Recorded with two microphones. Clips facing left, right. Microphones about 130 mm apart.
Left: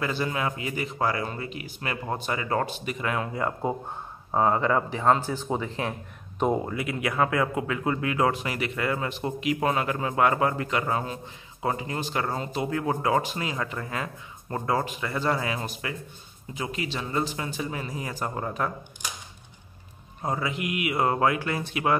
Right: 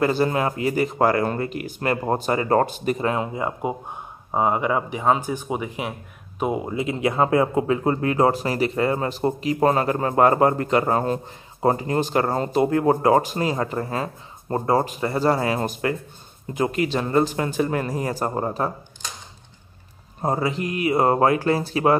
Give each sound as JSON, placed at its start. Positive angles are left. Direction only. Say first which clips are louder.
{"t": 0.0, "sound": "speech", "louder": "right 7 dB", "side_deg": -45}
{"t": 3.1, "sound": "speech", "louder": "right 4 dB", "side_deg": -20}
{"t": 6.7, "sound": "speech", "louder": "right 6 dB", "side_deg": -25}
{"t": 20.2, "sound": "speech", "louder": "right 6 dB", "side_deg": -35}